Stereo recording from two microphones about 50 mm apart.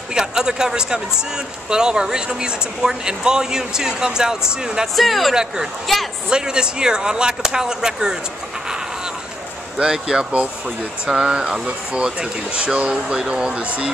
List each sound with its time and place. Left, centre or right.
0.1 s speech: centre
4.9 s a woman's voice: centre
5.3 s speech: centre
5.9 s a woman's voice: centre
6.3 s speech: centre
8.6 s a sound: centre
9.8 s speech: centre